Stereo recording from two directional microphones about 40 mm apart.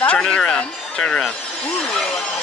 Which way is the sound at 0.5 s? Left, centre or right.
Left.